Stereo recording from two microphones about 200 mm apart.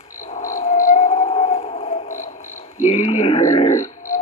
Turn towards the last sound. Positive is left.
turn(degrees=35)  # may be behind; listen again after turning